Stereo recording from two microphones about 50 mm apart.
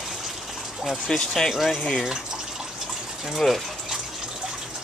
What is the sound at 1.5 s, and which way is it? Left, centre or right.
Speech, centre.